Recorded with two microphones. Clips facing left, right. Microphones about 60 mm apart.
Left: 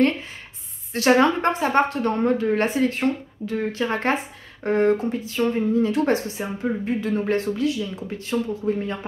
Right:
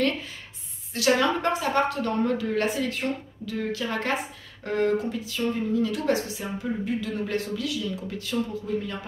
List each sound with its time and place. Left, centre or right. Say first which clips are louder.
0.9 s speech: left 5 dB; left